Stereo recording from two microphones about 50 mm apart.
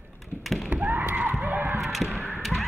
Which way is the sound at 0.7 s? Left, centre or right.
Right.